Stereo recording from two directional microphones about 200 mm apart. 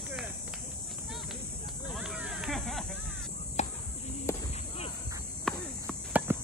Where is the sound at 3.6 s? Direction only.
35° left (ahead or behind).